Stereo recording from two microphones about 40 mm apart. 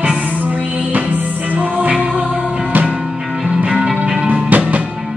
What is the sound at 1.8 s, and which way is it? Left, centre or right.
Music, right.